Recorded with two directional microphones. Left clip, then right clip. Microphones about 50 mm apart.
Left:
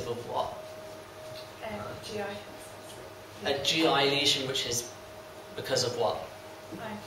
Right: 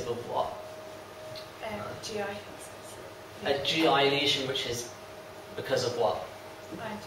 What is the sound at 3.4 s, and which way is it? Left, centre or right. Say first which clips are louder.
Speech: even; centre.